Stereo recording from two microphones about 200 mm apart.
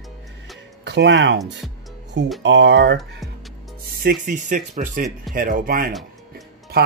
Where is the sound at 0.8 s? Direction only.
55° right (ahead or behind).